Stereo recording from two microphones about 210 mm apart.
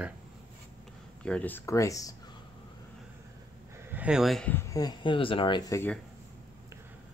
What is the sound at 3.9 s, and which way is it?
Speech, 5° right (ahead or behind).